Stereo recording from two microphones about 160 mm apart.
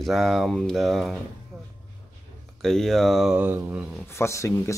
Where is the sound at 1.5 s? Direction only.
Centre (ahead or behind).